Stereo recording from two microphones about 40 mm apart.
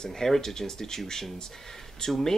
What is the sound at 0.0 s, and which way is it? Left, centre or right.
Speech, centre.